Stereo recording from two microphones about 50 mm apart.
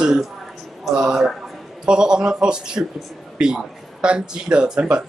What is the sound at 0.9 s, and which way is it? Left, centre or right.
Speech, centre.